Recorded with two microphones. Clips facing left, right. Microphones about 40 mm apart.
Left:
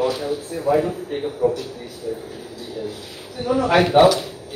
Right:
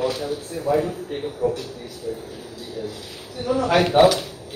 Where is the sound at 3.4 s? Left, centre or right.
Centre.